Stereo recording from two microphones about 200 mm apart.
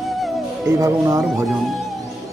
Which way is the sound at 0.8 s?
15° right (ahead or behind).